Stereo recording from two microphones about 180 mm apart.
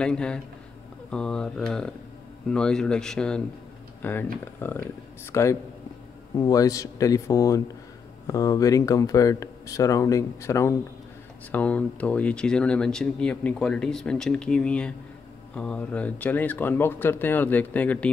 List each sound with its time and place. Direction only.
0.0 s speech: 5° left (ahead or behind)